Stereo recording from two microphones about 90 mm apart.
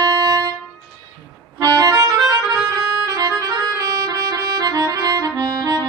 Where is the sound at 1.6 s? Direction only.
45° right (ahead or behind).